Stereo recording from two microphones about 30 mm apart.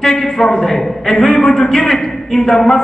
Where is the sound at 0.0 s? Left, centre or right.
Centre.